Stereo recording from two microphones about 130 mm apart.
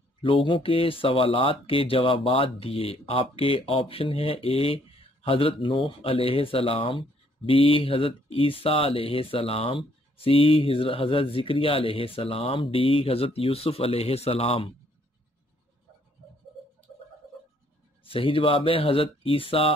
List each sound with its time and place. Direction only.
0.2 s speech: 40° left (ahead or behind)
18.0 s speech: 45° left (ahead or behind)